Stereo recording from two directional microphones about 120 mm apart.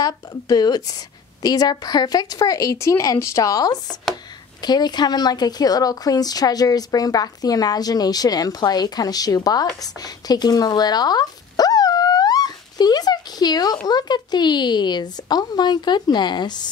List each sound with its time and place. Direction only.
0.0 s speech: 35° left (ahead or behind)